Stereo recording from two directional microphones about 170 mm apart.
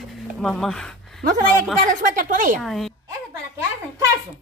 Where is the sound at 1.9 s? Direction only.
50° right (ahead or behind).